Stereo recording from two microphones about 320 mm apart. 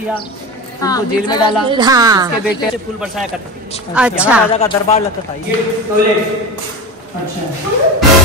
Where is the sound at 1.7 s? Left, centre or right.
Centre.